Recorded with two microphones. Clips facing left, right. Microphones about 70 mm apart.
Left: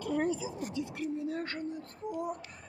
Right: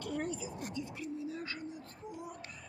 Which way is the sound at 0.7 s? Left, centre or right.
Left.